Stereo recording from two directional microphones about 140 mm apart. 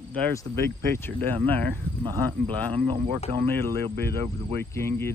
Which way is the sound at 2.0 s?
35° right (ahead or behind).